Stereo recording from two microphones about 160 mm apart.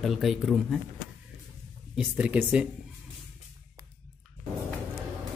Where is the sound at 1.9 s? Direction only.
5° right (ahead or behind).